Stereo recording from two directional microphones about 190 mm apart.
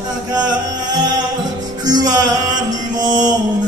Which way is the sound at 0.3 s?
20° right (ahead or behind).